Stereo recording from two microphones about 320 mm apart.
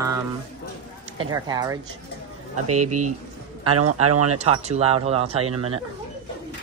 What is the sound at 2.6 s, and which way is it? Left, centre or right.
A man's voice, right.